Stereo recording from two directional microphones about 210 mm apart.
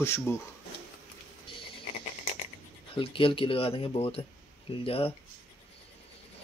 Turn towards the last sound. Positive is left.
turn(degrees=25)  # may be behind; listen again after turning